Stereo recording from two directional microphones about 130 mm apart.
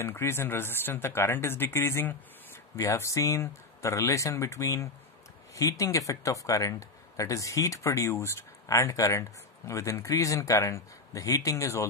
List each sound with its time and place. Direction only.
0.0 s speech: 20° left (ahead or behind)